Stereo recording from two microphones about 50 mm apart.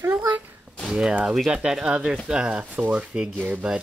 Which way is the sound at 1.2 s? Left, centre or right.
Centre.